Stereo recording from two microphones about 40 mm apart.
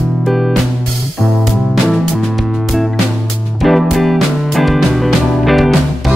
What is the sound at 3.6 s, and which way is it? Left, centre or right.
Music, centre.